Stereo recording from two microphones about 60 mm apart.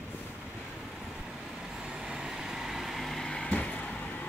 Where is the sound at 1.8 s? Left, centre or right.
Centre.